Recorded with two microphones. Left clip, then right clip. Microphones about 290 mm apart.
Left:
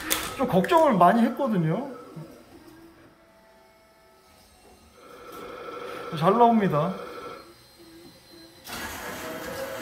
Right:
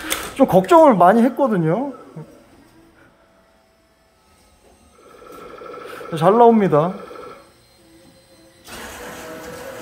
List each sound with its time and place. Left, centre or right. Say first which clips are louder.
0.0 s a sound: right 9 dB; right
0.7 s speech: right 7 dB; centre
6.1 s speech: right 7 dB; right